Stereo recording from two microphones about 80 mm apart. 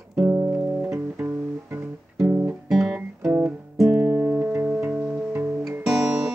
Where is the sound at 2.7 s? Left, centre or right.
Centre.